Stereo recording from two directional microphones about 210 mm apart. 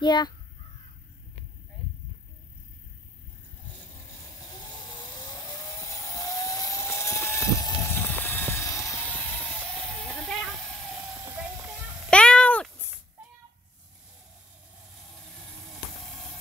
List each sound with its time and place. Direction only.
0.0 s speech: 20° left (ahead or behind)
4.9 s vehicle: 20° left (ahead or behind)
8.8 s music: 5° right (ahead or behind)
9.2 s a sound: 5° left (ahead or behind)
11.2 s a sound: 10° right (ahead or behind)
12.1 s cat: 5° left (ahead or behind)